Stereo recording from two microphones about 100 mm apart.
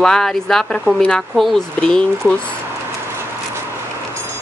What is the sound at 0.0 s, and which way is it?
A woman's voice, 5° left (ahead or behind).